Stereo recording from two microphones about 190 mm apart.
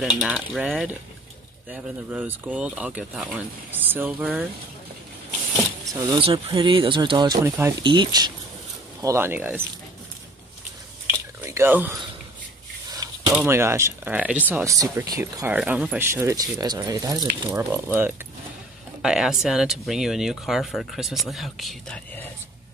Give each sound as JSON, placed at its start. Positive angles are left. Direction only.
{"t": 0.6, "sound": "speech", "side_deg": 0}
{"t": 5.9, "sound": "speech", "side_deg": -25}
{"t": 7.4, "sound": "speech", "side_deg": -10}
{"t": 7.8, "sound": "speech", "side_deg": -25}
{"t": 11.1, "sound": "a sound", "side_deg": -15}
{"t": 13.3, "sound": "speech", "side_deg": -10}